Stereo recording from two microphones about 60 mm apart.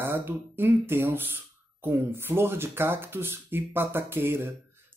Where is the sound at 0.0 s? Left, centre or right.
Right.